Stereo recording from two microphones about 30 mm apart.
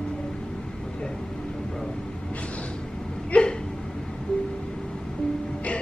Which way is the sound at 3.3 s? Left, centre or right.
Left.